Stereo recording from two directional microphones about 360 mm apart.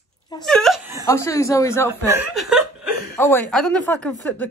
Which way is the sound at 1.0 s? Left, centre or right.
Centre.